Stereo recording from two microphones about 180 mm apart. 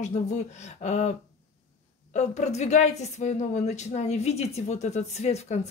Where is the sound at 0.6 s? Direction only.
40° left (ahead or behind).